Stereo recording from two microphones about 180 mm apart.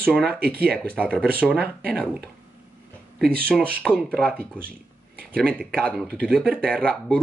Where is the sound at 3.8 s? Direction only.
5° left (ahead or behind).